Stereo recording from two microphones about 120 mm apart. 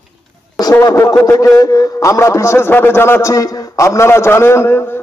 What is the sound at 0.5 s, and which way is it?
A man's voice, 30° left (ahead or behind).